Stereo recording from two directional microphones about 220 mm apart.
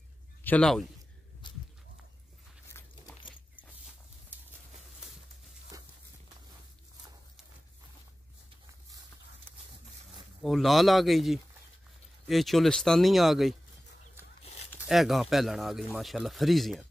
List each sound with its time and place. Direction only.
0.4 s a man's voice: 5° left (ahead or behind)
1.4 s a sound: 20° left (ahead or behind)
10.4 s speech: centre (ahead or behind)
14.8 s speech: centre (ahead or behind)